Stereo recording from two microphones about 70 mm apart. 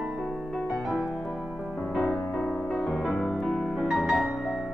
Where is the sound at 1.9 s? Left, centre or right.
Centre.